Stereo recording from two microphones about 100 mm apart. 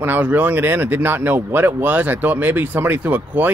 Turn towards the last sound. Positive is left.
turn(degrees=-15)  # may be behind; listen again after turning